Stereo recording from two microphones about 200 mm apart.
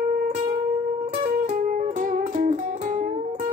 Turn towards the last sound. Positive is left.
turn(degrees=-40)  # may be behind; listen again after turning